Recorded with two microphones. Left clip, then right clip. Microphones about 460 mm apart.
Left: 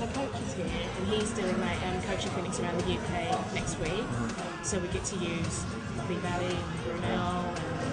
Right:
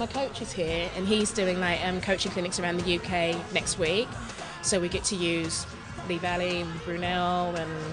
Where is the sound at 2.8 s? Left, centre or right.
Right.